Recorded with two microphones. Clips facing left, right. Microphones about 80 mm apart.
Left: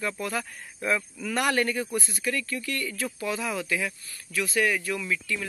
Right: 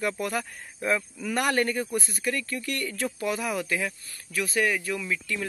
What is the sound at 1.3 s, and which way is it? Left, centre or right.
Speech, right.